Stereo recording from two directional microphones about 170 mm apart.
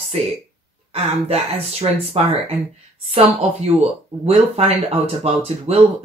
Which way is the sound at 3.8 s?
35° right (ahead or behind).